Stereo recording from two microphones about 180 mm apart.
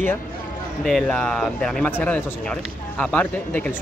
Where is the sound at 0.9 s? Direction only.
5° left (ahead or behind).